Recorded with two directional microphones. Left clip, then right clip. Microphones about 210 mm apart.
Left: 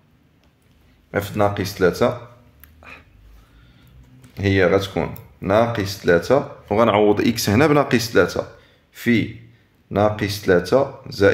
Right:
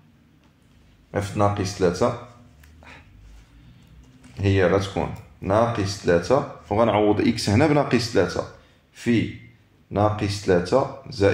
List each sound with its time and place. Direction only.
1.1 s speech: 35° left (ahead or behind)
4.3 s speech: 30° left (ahead or behind)